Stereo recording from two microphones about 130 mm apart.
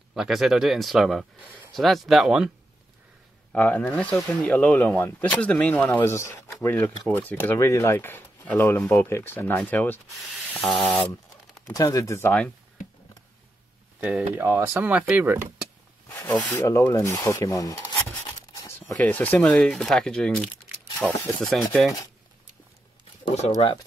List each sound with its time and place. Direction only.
0.1 s speech: centre (ahead or behind)
3.5 s speech: 15° left (ahead or behind)
11.7 s speech: 25° left (ahead or behind)
13.9 s speech: 10° right (ahead or behind)
16.2 s speech: 15° left (ahead or behind)
18.5 s zipper: 25° left (ahead or behind)
18.9 s speech: 15° left (ahead or behind)